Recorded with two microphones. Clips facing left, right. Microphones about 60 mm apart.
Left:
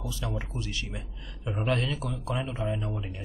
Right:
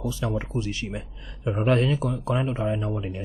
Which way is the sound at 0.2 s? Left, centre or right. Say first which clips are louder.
Right 7 dB; right.